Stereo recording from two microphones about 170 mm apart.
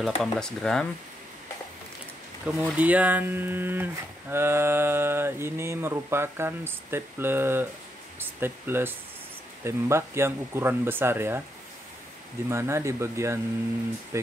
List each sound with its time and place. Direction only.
0.0 s speech: centre (ahead or behind)
2.4 s speech: 10° right (ahead or behind)
12.4 s speech: 15° right (ahead or behind)